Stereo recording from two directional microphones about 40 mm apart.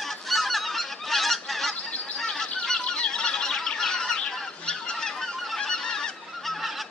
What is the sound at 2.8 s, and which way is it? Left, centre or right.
Fowl, left.